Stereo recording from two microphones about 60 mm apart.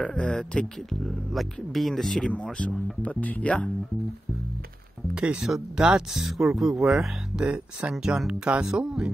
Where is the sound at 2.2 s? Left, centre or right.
Centre.